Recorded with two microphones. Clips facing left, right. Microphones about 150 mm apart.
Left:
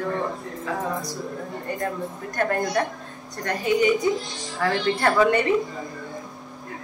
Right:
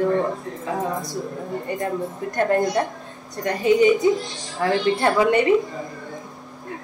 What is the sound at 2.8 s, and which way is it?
Speech, 20° right (ahead or behind).